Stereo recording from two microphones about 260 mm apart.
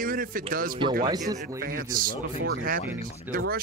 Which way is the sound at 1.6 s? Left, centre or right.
Right.